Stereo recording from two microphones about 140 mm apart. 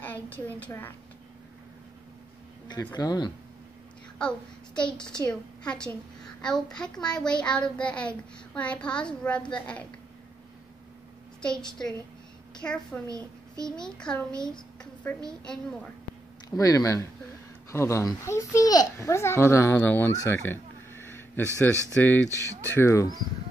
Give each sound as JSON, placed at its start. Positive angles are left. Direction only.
{"t": 0.0, "sound": "a woman's voice", "side_deg": 10}
{"t": 2.9, "sound": "a child's voice", "side_deg": 30}
{"t": 4.2, "sound": "speech", "side_deg": 5}
{"t": 11.4, "sound": "a woman's voice", "side_deg": 5}
{"t": 13.0, "sound": "a child's voice", "side_deg": -25}
{"t": 13.7, "sound": "a child's voice", "side_deg": 5}
{"t": 16.4, "sound": "a child's voice", "side_deg": 25}
{"t": 20.1, "sound": "a sound", "side_deg": 20}
{"t": 21.9, "sound": "a child's voice", "side_deg": 15}